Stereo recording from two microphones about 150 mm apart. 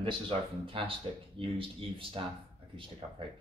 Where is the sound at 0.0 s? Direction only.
35° right (ahead or behind).